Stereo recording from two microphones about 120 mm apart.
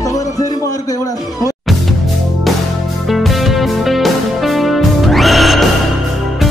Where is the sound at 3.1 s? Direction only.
Centre (ahead or behind).